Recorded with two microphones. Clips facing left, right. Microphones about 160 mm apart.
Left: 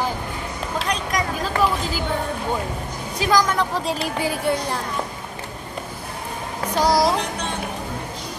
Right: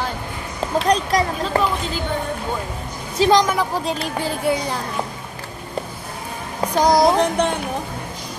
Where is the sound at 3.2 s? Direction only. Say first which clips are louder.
Right 4 dB; 25° right (ahead or behind).